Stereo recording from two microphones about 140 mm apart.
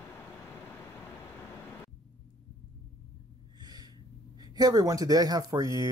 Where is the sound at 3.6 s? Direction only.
30° right (ahead or behind).